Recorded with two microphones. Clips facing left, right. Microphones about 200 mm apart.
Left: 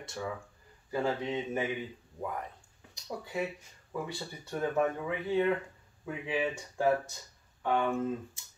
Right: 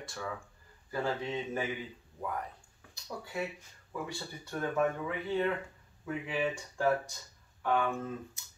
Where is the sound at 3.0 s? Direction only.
20° left (ahead or behind).